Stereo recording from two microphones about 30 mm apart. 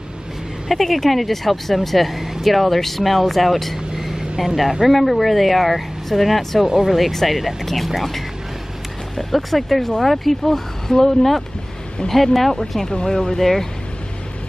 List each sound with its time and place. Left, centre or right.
0.7 s speech: centre
3.9 s vehicle: centre
4.4 s speech: centre
4.8 s speech: centre
12.8 s speech: centre